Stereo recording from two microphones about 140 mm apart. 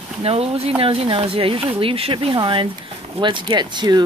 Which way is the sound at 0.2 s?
45° right (ahead or behind).